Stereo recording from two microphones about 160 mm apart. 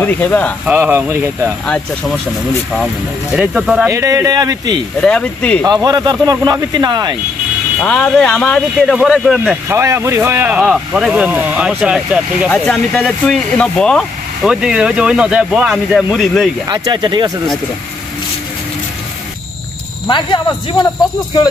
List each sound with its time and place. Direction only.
0.0 s speech: 10° left (ahead or behind)
0.7 s speech: 10° right (ahead or behind)
3.3 s speech: 5° right (ahead or behind)
3.9 s speech: 20° right (ahead or behind)
5.0 s speech: 5° left (ahead or behind)
5.7 s speech: 25° right (ahead or behind)
7.8 s speech: 5° left (ahead or behind)
9.7 s speech: 15° right (ahead or behind)
12.4 s speech: 5° left (ahead or behind)
16.6 s speech: 25° right (ahead or behind)
20.1 s speech: 30° left (ahead or behind)